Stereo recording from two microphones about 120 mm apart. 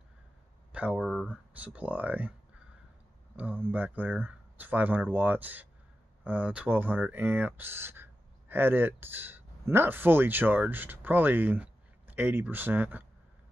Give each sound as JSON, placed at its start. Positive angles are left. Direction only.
{"t": 0.7, "sound": "speech", "side_deg": -10}
{"t": 3.3, "sound": "speech", "side_deg": -15}